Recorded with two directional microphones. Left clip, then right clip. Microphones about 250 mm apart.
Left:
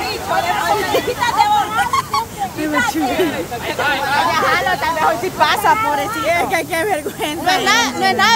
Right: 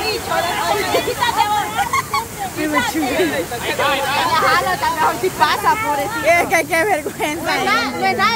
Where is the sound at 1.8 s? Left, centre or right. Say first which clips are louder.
Left 2 dB; centre.